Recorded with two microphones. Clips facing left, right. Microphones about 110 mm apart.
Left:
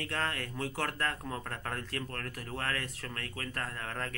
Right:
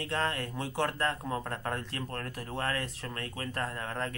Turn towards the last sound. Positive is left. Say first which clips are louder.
# right 3 dB
turn(degrees=-25)  # may be behind; listen again after turning